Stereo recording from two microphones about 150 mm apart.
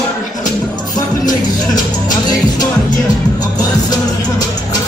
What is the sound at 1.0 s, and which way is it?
Speech, 25° left (ahead or behind).